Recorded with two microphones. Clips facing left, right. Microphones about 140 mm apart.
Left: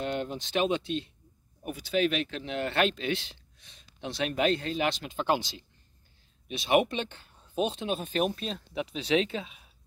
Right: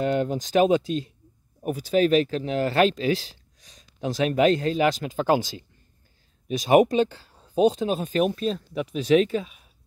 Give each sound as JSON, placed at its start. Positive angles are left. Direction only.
{"t": 0.2, "sound": "speech", "side_deg": -40}